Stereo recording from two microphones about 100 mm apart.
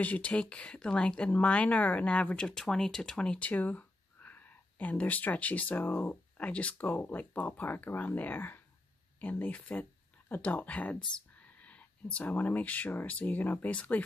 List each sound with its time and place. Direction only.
0.0 s speech: 15° left (ahead or behind)